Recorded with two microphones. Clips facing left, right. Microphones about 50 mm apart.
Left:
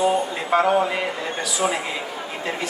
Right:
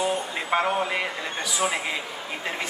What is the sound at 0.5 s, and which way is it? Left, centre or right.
Speech, right.